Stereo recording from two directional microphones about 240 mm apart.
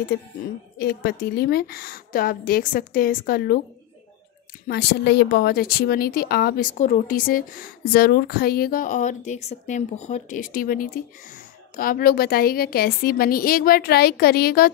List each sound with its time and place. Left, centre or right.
0.1 s a woman's voice: left
4.6 s a woman's voice: left